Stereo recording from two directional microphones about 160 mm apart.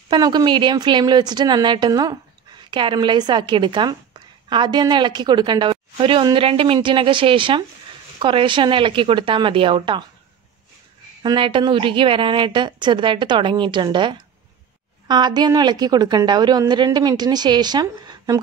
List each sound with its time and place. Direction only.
0.1 s a woman's voice: 25° right (ahead or behind)
11.2 s a woman's voice: 30° right (ahead or behind)